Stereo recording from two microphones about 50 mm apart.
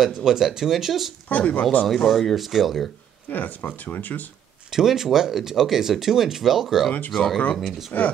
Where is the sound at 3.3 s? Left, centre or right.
Left.